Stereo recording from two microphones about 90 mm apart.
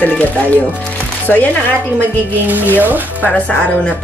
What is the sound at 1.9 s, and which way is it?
Speech, 20° right (ahead or behind).